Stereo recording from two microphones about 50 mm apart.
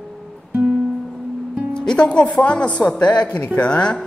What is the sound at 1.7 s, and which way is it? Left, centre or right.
Music, centre.